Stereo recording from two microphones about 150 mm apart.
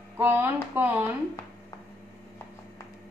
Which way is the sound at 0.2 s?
15° right (ahead or behind).